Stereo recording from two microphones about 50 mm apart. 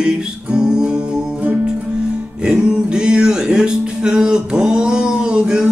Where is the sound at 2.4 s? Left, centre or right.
Centre.